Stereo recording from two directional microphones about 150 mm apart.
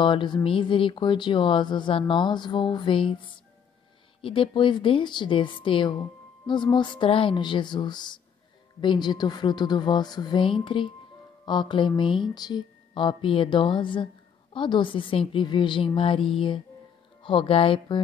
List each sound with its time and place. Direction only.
0.0 s a woman's voice: 30° left (ahead or behind)
4.2 s a woman's voice: 35° left (ahead or behind)